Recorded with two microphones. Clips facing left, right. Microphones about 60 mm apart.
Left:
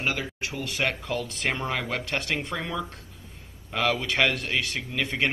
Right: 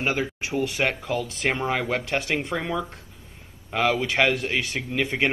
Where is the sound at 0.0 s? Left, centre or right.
Right.